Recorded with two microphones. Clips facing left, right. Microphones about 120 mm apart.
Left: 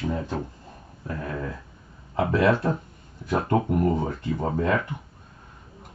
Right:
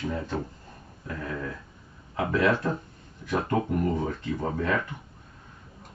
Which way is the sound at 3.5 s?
15° left (ahead or behind).